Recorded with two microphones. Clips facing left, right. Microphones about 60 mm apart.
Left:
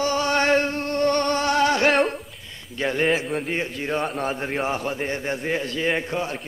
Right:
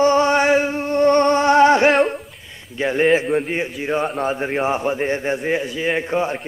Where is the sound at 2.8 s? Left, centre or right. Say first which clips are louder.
Right 5 dB; centre.